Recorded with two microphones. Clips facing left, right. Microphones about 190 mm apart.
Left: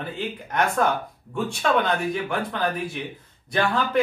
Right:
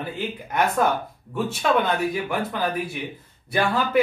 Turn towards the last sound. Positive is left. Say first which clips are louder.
# right 1 dB
turn(degrees=-10)  # may be behind; listen again after turning